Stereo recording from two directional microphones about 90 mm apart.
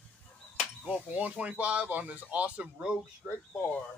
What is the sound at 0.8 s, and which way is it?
Speech, 15° right (ahead or behind).